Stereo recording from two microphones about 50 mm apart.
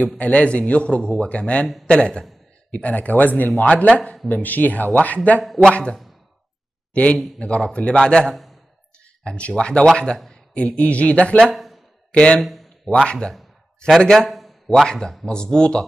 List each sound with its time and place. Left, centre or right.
0.2 s a man's voice: left
2.7 s speech: left
4.3 s speech: left
5.6 s a man's voice: centre
8.3 s a sound: centre
9.2 s speech: centre
11.5 s a sound: centre
12.1 s speech: left
12.4 s speech: centre
12.8 s a man's voice: centre
14.9 s speech: centre